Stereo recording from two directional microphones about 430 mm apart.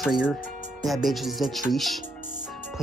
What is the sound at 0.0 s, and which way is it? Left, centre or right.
Speech, centre.